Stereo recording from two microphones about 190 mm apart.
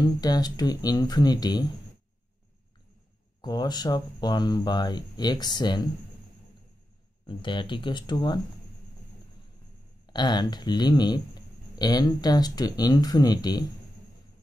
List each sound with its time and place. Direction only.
0.0 s speech: 20° left (ahead or behind)
3.3 s speech: 20° left (ahead or behind)
7.2 s speech: 25° left (ahead or behind)
10.0 s speech: 25° left (ahead or behind)